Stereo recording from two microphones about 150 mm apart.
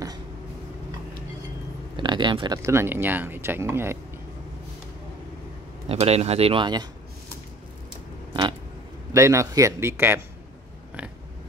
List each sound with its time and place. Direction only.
2.0 s speech: 30° right (ahead or behind)
2.6 s speech: 15° right (ahead or behind)
5.9 s speech: 45° right (ahead or behind)
8.3 s a sound: 30° right (ahead or behind)
9.1 s a man's voice: 20° right (ahead or behind)